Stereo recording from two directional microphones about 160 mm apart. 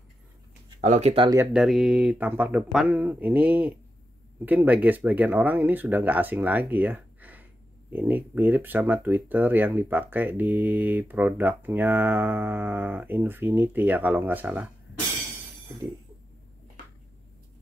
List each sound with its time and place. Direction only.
0.7 s speech: 50° right (ahead or behind)
1.5 s speech: 5° right (ahead or behind)